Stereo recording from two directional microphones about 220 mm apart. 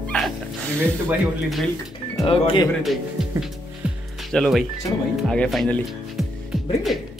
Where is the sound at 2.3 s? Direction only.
25° left (ahead or behind).